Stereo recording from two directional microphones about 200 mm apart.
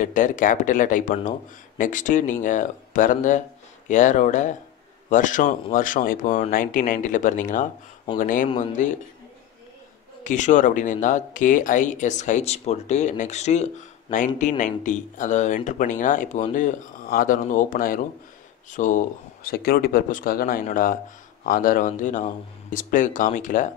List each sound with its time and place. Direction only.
0.0 s speech: 40° left (ahead or behind)
8.5 s speech: 30° left (ahead or behind)
10.2 s speech: 40° left (ahead or behind)